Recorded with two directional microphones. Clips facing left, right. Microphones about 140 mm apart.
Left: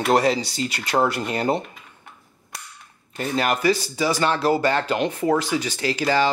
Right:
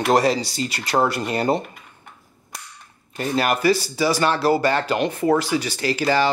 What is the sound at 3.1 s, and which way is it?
Speech, 10° right (ahead or behind).